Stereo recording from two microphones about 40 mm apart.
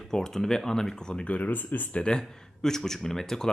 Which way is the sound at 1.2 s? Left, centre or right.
Left.